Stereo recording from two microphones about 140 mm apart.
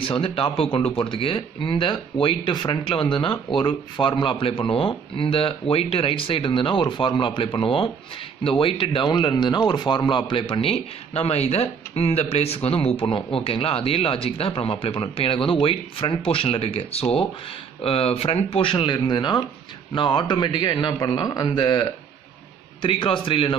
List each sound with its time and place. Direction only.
0.0 s a man's voice: 40° left (ahead or behind)